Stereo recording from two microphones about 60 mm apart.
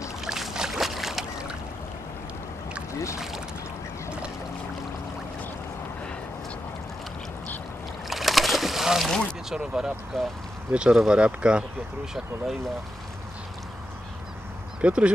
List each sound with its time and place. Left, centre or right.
0.2 s boat: centre
3.2 s boat: centre
8.1 s boat: centre
9.5 s speech: centre
10.1 s speech: centre
10.7 s speech: centre
14.8 s speech: centre